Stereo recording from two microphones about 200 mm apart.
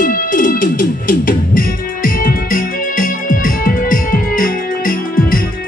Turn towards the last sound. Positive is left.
turn(degrees=45)  # may be behind; listen again after turning